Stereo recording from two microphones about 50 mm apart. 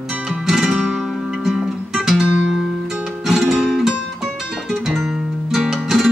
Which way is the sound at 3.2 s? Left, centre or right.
Centre.